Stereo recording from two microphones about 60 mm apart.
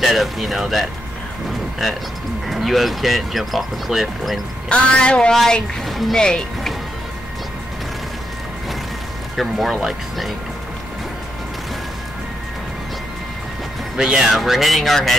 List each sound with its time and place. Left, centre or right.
0.0 s speech: centre
2.4 s speech: centre
4.6 s a woman's voice: centre
5.4 s speech: centre
6.1 s a woman's voice: centre
9.4 s speech: centre
13.9 s speech: centre
14.3 s speech: centre